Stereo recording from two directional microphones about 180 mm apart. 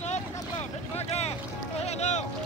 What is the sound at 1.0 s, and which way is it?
Boat, 35° left (ahead or behind).